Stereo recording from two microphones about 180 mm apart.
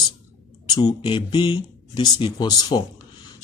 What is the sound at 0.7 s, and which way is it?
Speech, 25° left (ahead or behind).